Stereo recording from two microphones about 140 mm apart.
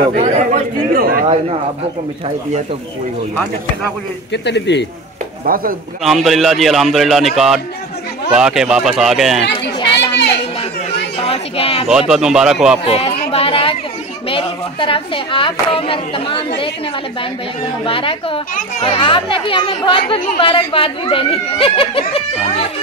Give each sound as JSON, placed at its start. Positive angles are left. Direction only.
{"t": 0.2, "sound": "chatter", "side_deg": -65}
{"t": 1.2, "sound": "speech", "side_deg": -45}
{"t": 5.4, "sound": "speech", "side_deg": -90}
{"t": 6.0, "sound": "a man's voice", "side_deg": 0}
{"t": 9.8, "sound": "a sound", "side_deg": 30}
{"t": 11.1, "sound": "speech", "side_deg": 45}
{"t": 11.9, "sound": "a man's voice", "side_deg": -5}
{"t": 12.8, "sound": "chatter", "side_deg": 45}
{"t": 14.3, "sound": "speech", "side_deg": 40}
{"t": 17.8, "sound": "speech", "side_deg": 40}